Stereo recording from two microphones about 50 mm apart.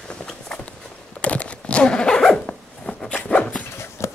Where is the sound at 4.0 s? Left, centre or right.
Left.